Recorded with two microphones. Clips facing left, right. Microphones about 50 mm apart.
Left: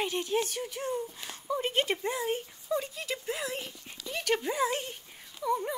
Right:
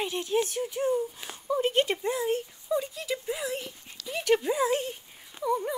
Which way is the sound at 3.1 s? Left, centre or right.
Centre.